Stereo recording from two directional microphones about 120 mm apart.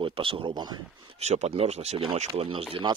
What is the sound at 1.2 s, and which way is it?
Speech, 65° right (ahead or behind).